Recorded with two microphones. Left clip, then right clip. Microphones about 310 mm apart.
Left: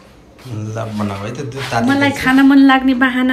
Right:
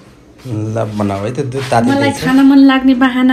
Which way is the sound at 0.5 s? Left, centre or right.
Centre.